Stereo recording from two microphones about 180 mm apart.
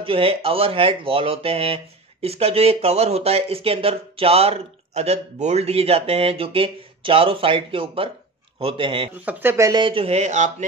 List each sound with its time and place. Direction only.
0.0 s speech: 30° right (ahead or behind)
9.2 s speech: 10° right (ahead or behind); by 10.5 s 40° right (ahead or behind)